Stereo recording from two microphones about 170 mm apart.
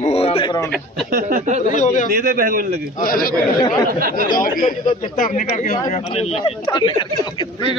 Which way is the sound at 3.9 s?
60° right (ahead or behind).